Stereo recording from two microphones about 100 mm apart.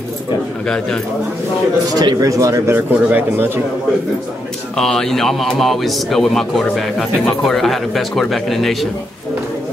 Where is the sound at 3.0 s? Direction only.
20° right (ahead or behind).